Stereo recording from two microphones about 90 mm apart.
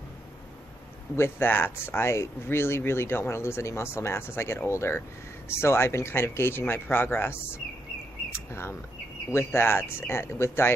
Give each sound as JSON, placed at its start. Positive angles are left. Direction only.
{"t": 1.1, "sound": "speech", "side_deg": 25}
{"t": 8.3, "sound": "a sound", "side_deg": 30}
{"t": 9.3, "sound": "speech", "side_deg": 25}